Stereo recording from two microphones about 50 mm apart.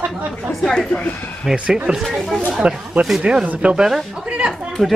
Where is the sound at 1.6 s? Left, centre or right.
Centre.